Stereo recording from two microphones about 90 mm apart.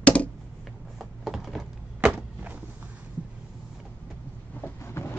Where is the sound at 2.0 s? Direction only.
15° right (ahead or behind).